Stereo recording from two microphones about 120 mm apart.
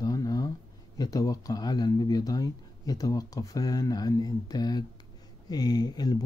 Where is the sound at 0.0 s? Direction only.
30° left (ahead or behind).